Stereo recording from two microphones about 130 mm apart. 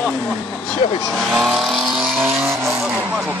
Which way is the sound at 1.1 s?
Centre (ahead or behind).